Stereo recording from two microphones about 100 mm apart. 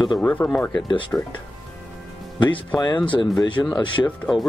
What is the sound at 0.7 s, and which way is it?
Speech, 50° left (ahead or behind).